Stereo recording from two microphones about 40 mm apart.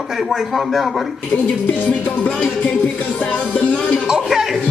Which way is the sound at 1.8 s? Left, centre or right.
Left.